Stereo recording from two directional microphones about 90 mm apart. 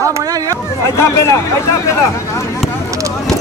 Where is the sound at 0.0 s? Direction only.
40° right (ahead or behind).